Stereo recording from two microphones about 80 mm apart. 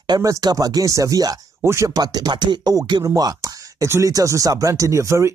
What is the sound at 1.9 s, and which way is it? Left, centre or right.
Beatboxing, right.